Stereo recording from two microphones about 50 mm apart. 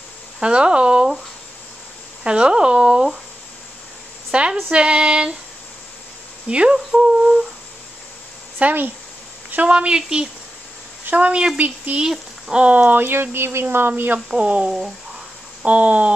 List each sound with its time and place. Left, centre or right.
0.4 s speech: centre
2.2 s speech: centre
4.3 s a sound: centre
4.6 s music: centre
6.5 s speech: right
8.5 s speech: right
9.7 s speech: centre
11.1 s music: right
11.5 s speech: right
12.0 s speech: centre
12.6 s speech: right
14.3 s music: right